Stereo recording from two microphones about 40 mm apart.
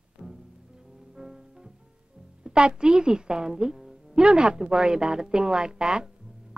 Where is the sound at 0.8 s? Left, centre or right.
Centre.